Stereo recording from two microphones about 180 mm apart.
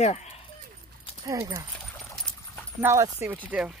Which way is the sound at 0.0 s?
40° left (ahead or behind).